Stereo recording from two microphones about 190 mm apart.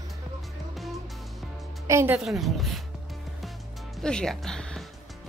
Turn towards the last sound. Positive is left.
turn(degrees=5)  # may be behind; listen again after turning